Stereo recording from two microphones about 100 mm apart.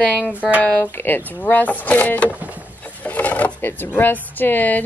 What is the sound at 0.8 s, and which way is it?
Speech, 20° left (ahead or behind).